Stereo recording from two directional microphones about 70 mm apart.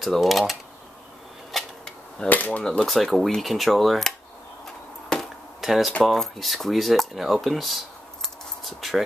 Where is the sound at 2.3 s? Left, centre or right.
Left.